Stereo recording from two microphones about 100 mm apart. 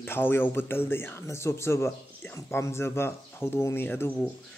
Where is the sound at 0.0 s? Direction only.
20° left (ahead or behind).